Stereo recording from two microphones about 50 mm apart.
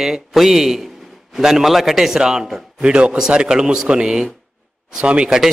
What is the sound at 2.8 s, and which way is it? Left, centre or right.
A man's voice, right.